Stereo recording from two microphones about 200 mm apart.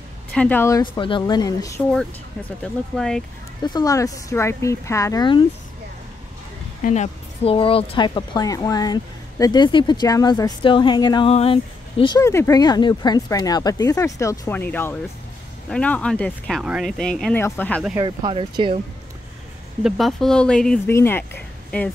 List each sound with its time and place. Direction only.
0.3 s speech: 5° left (ahead or behind)
1.8 s speech: 5° left (ahead or behind)
3.6 s speech: 20° left (ahead or behind)
6.8 s speech: 35° left (ahead or behind); by 17.8 s 10° left (ahead or behind)
17.9 s speech: 25° right (ahead or behind)
19.8 s speech: centre (ahead or behind)